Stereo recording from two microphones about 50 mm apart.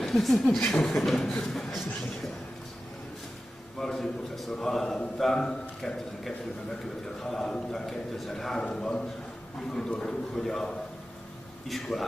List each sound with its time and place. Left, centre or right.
0.0 s a man's voice: centre
3.8 s a man's voice: centre
8.6 s a man's voice: centre